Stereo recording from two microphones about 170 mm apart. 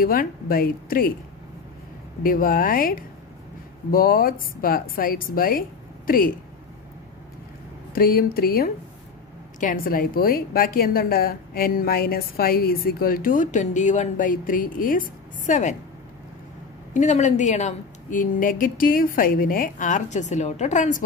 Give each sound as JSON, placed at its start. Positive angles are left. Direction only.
{"t": 0.0, "sound": "a woman's voice", "side_deg": 60}
{"t": 2.2, "sound": "a woman's voice", "side_deg": 55}
{"t": 7.9, "sound": "a woman's voice", "side_deg": 60}
{"t": 16.9, "sound": "a woman's voice", "side_deg": 45}